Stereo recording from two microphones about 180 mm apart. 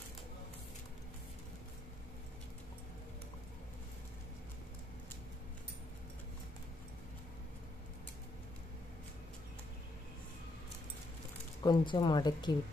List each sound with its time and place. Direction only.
11.6 s speech: 25° left (ahead or behind)